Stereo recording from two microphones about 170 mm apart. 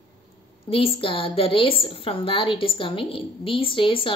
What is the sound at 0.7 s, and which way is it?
A woman's voice, 35° left (ahead or behind).